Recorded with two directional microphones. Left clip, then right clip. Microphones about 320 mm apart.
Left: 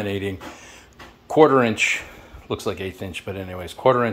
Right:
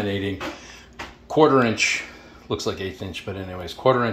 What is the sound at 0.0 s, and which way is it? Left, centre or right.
Speech, left.